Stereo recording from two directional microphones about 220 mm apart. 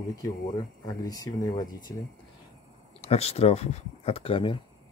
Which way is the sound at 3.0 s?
30° left (ahead or behind).